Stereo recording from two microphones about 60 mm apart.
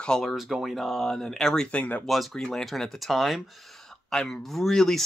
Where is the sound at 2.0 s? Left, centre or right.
Centre.